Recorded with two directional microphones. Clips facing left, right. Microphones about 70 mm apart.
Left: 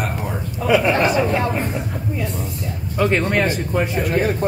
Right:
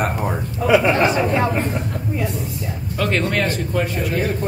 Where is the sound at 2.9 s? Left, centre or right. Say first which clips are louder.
Left 2 dB; centre.